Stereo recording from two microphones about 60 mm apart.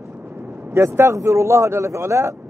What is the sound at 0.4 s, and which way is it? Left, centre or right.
A man's voice, right.